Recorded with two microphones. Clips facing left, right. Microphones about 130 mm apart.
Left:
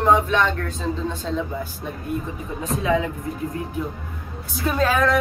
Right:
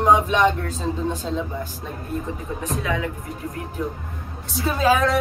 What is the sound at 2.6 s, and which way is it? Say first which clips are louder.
Speech: left 4 dB; 25° left (ahead or behind).